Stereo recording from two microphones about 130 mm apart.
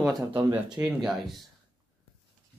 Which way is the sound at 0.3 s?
35° right (ahead or behind).